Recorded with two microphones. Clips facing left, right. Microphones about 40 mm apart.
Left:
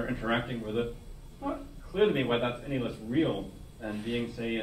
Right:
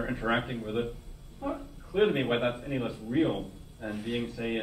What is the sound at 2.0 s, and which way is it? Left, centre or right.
A man's voice, centre.